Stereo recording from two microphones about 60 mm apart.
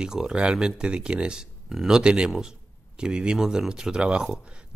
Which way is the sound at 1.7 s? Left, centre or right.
Centre.